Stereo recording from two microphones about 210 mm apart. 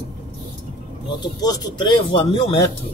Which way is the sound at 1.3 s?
15° left (ahead or behind).